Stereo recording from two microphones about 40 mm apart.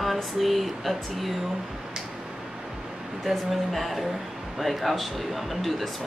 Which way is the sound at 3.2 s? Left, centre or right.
Centre.